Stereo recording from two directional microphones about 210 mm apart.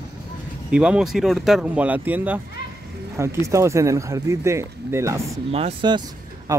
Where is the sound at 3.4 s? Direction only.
15° right (ahead or behind).